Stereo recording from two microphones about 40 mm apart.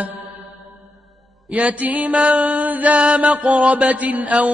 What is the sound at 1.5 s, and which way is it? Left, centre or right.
Mantra, right.